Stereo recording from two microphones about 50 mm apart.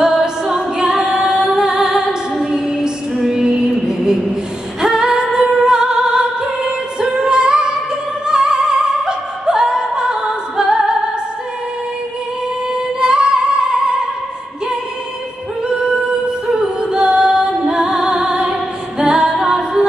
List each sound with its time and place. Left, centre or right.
0.0 s music: centre
8.3 s opera: centre
10.6 s music: centre
12.7 s music: centre
15.7 s music: centre